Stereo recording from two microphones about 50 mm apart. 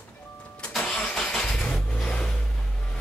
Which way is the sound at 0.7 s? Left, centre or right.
Centre.